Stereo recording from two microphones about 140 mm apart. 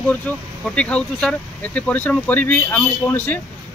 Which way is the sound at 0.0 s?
10° left (ahead or behind).